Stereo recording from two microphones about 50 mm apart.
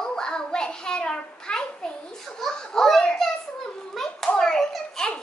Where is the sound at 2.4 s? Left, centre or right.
Centre.